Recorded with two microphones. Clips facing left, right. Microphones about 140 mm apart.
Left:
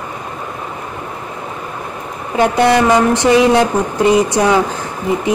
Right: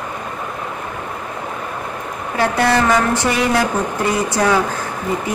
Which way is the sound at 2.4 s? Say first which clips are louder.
Left 5 dB; 20° left (ahead or behind).